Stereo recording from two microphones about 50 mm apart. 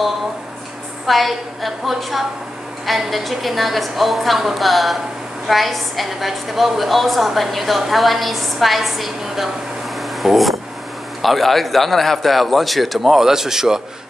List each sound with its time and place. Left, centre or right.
1.0 s a woman's voice: centre
10.0 s a sound: centre
11.2 s a woman's voice: centre